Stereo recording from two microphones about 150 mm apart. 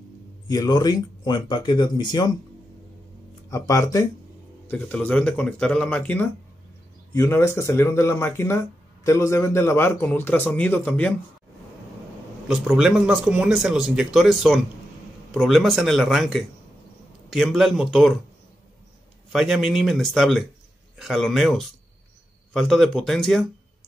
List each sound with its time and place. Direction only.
0.5 s speech: 25° left (ahead or behind)
3.4 s speech: 20° left (ahead or behind)
4.6 s speech: 10° left (ahead or behind)
12.4 s speech: 5° right (ahead or behind)
19.3 s speech: centre (ahead or behind)